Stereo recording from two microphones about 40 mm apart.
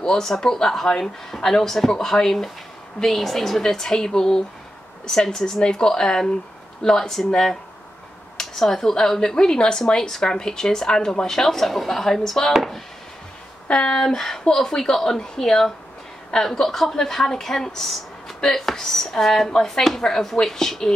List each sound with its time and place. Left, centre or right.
0.0 s speech: centre
13.7 s speech: left
13.9 s speech: centre